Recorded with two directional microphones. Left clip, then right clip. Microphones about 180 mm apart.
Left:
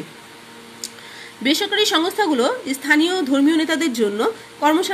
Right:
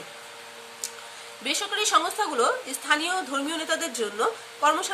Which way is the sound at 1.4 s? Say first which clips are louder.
Left 9 dB; 20° left (ahead or behind).